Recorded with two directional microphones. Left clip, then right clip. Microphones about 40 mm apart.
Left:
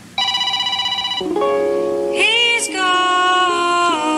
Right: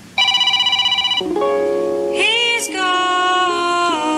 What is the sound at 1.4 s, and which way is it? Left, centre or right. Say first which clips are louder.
Music: left 3 dB; centre.